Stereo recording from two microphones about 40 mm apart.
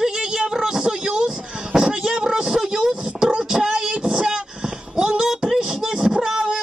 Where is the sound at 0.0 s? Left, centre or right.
Centre.